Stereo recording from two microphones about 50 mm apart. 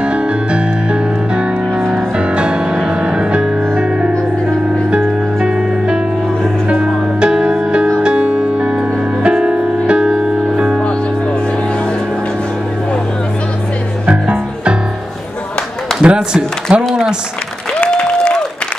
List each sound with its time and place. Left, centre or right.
0.0 s music: centre
5.4 s music: centre
14.0 s music: right
16.0 s a sound: right
16.7 s a sound: centre
17.9 s applause: centre